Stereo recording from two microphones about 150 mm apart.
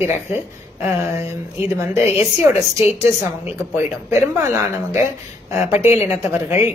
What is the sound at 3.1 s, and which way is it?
A woman's voice, 15° right (ahead or behind).